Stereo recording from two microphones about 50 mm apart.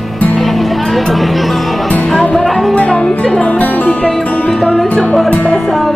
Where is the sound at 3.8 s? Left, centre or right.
Centre.